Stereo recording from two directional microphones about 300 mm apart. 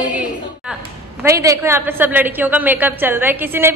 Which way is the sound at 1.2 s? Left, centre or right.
Centre.